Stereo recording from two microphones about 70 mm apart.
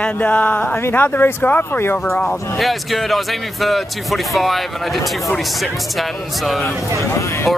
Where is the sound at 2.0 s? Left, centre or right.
Centre.